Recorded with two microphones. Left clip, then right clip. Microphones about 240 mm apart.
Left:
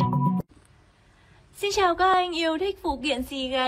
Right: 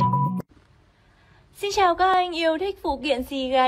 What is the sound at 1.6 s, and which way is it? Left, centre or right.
A woman's voice, centre.